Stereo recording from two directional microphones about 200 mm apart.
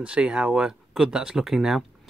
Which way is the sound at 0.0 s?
5° right (ahead or behind).